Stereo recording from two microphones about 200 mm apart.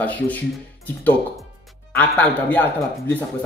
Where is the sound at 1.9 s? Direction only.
5° left (ahead or behind).